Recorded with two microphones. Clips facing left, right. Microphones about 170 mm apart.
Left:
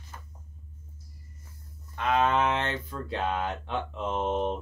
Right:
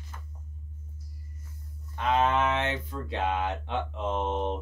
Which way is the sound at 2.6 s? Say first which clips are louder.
Right 1 dB; 20° right (ahead or behind).